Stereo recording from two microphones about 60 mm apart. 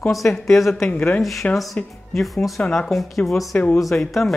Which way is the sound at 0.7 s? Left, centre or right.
Centre.